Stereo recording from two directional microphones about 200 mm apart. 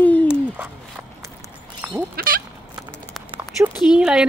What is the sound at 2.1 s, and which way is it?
Sheep, 45° right (ahead or behind).